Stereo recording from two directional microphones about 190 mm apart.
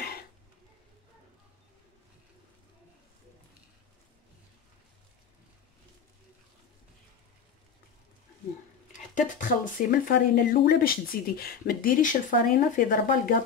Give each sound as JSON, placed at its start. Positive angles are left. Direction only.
{"t": 9.1, "sound": "speech", "side_deg": 45}